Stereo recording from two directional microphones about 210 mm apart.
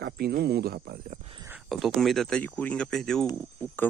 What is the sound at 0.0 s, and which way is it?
Speech, 50° right (ahead or behind).